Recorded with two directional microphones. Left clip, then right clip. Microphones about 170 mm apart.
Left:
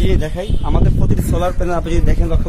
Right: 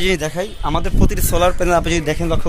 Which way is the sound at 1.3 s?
25° right (ahead or behind).